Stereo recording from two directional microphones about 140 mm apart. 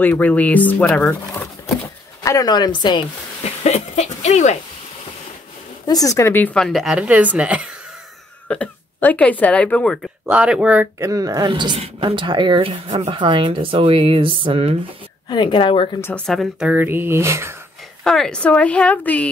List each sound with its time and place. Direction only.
0.0 s speech: 10° left (ahead or behind)
2.2 s a woman's voice: 25° left (ahead or behind)
3.4 s a sound: 50° left (ahead or behind)
5.9 s a woman's voice: 25° left (ahead or behind); by 7.6 s 10° right (ahead or behind)
8.5 s speech: 10° left (ahead or behind)
10.2 s speech: 10° right (ahead or behind)
11.0 s speech: 25° right (ahead or behind); by 14.8 s 40° right (ahead or behind)
15.2 s a woman's voice: 35° left (ahead or behind)
16.3 s a woman's voice: centre (ahead or behind)
16.6 s speech: 15° right (ahead or behind)
18.0 s speech: 5° left (ahead or behind)